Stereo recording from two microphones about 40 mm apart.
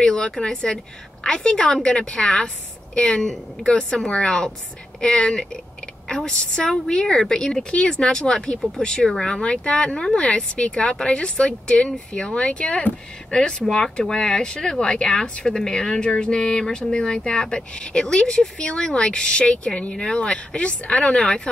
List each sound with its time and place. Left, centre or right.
0.0 s a woman's voice: centre
21.0 s a woman's voice: centre